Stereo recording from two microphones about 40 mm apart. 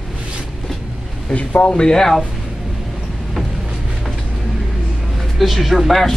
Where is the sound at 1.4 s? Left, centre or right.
Left.